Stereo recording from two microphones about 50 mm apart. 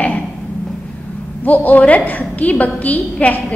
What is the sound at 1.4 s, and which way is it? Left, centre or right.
A woman's voice, left.